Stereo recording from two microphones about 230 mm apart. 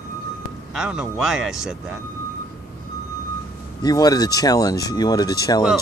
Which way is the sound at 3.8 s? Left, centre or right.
Centre.